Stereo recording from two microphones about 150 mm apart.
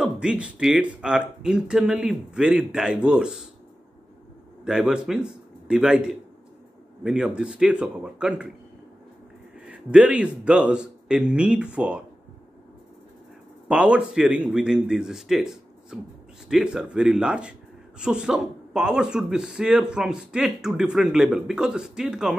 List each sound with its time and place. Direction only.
0.0 s a man's voice: 5° right (ahead or behind)
4.6 s a man's voice: 5° right (ahead or behind)
9.7 s a man's voice: 10° right (ahead or behind)
13.7 s speech: 10° right (ahead or behind)